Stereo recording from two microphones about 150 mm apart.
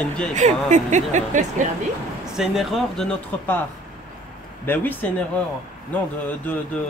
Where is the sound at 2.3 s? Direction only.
5° right (ahead or behind).